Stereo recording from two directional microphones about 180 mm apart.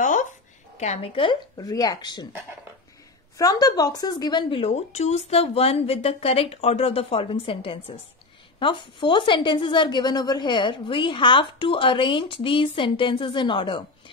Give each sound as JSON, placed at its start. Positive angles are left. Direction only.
{"t": 0.0, "sound": "a sound", "side_deg": 45}
{"t": 0.7, "sound": "a woman's voice", "side_deg": 35}
{"t": 3.3, "sound": "a woman's voice", "side_deg": 20}